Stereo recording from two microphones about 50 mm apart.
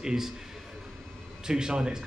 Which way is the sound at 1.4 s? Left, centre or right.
Centre.